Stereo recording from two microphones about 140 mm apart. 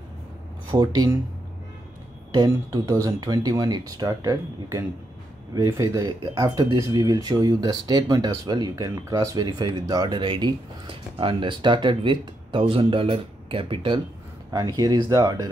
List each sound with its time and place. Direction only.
0.7 s speech: 30° right (ahead or behind)
2.3 s speech: 30° right (ahead or behind)